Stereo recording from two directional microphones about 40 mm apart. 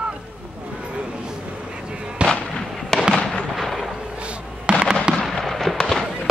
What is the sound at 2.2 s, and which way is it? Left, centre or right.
Fireworks, right.